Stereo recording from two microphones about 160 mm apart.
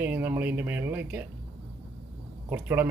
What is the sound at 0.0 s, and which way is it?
Speech, 10° right (ahead or behind).